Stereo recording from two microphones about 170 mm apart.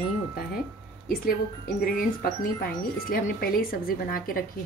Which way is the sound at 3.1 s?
60° left (ahead or behind).